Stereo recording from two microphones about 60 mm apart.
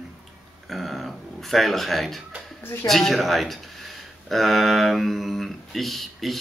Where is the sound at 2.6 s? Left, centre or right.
Left.